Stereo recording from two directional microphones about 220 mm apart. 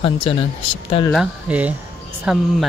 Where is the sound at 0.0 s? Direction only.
25° left (ahead or behind).